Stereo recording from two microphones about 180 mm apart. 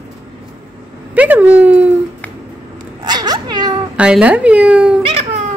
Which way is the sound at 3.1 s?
20° right (ahead or behind).